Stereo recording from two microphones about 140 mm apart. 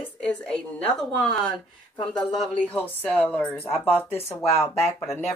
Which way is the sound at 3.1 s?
10° left (ahead or behind).